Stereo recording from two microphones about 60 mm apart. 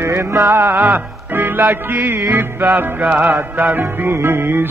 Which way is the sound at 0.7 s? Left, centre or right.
Right.